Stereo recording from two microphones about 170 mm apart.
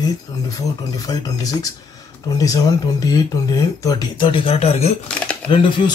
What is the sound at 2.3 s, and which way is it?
Speech, 20° left (ahead or behind).